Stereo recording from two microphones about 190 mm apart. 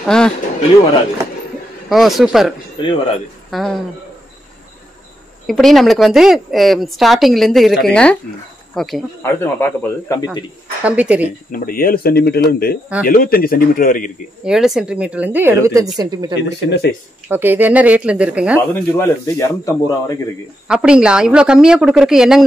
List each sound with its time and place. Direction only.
0.0 s speech: 5° left (ahead or behind)
1.9 s a woman's voice: centre (ahead or behind)
2.8 s speech: 25° left (ahead or behind)
3.4 s speech: centre (ahead or behind)
5.5 s a woman's voice: centre (ahead or behind)
9.2 s speech: 10° left (ahead or behind)
10.8 s a woman's voice: 5° right (ahead or behind)
11.2 s speech: 45° left (ahead or behind)
14.4 s a woman's voice: 5° right (ahead or behind); by 16.3 s 20° right (ahead or behind)
16.3 s speech: 60° left (ahead or behind)
17.3 s a woman's voice: 10° right (ahead or behind)
18.7 s speech: 15° left (ahead or behind)
20.6 s a woman's voice: 5° right (ahead or behind)